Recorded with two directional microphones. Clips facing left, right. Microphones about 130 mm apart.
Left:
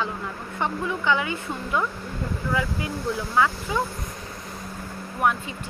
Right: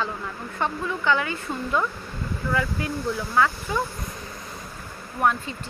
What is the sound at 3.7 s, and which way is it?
Speech, 10° left (ahead or behind).